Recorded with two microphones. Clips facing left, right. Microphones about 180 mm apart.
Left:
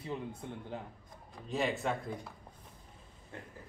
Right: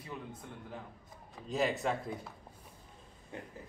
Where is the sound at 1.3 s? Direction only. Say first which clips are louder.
Right 1 dB; centre (ahead or behind).